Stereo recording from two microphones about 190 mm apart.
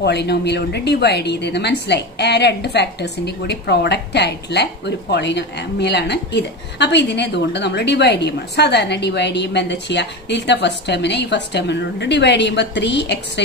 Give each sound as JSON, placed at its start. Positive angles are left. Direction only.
{"t": 0.0, "sound": "a woman's voice", "side_deg": 60}